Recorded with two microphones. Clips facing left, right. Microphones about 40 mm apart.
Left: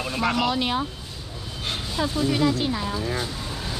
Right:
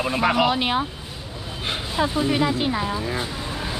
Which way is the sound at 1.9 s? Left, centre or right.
Right.